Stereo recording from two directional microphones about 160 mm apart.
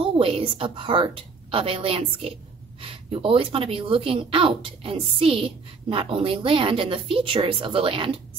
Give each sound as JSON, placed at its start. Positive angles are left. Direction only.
{"t": 0.0, "sound": "speech", "side_deg": -35}